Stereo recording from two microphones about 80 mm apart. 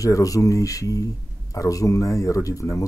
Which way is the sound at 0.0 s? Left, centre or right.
Left.